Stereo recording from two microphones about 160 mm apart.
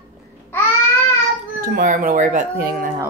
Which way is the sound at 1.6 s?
60° right (ahead or behind).